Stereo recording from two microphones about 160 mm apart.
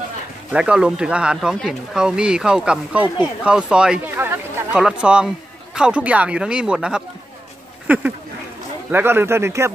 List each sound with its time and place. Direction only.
0.5 s speech: 5° right (ahead or behind)
7.8 s a sound: 10° right (ahead or behind)
8.9 s speech: 15° right (ahead or behind)